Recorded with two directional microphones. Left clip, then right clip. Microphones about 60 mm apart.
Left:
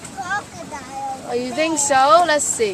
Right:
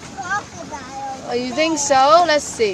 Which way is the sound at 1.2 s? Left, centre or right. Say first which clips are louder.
Right 2 dB; right.